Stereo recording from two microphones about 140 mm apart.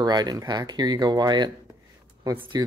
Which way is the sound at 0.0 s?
30° right (ahead or behind).